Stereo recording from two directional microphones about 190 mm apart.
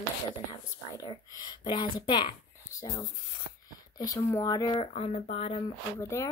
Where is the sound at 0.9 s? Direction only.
25° left (ahead or behind).